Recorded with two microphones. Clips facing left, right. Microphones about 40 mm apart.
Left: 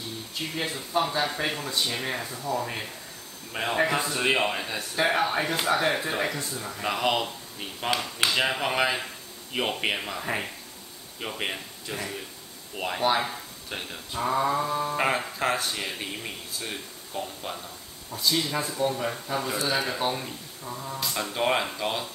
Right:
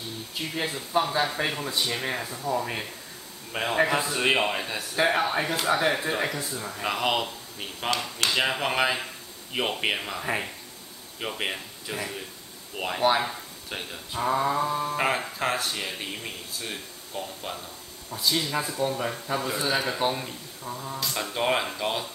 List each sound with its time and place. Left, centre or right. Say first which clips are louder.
0.3 s speech: right 1 dB; centre
7.9 s speech: left 1 dB; centre
8.3 s speech: right 1 dB; centre